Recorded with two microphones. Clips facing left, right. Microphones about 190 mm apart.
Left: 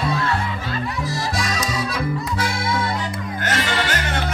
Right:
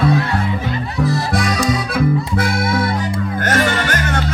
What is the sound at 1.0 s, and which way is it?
Music, 55° right (ahead or behind).